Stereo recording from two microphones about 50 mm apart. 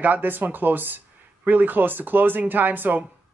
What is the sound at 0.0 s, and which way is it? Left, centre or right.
A woman's voice, right.